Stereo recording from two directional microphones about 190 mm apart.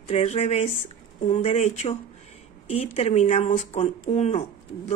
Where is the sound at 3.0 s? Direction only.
35° left (ahead or behind).